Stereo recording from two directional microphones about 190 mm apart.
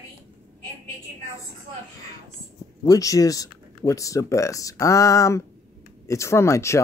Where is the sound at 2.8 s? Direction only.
20° left (ahead or behind).